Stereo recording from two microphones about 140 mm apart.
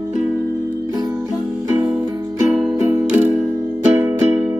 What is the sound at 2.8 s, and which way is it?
Music, 15° right (ahead or behind).